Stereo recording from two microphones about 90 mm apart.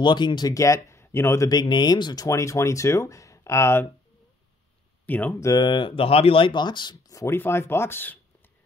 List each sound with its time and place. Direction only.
0.0 s speech: 55° left (ahead or behind)
0.6 s speech: 35° left (ahead or behind)
1.5 s speech: 50° left (ahead or behind)
2.2 s speech: 35° left (ahead or behind)
5.0 s speech: 20° left (ahead or behind)
5.4 s speech: 45° left (ahead or behind)
7.0 s speech: 40° left (ahead or behind)
7.3 s speech: 25° left (ahead or behind)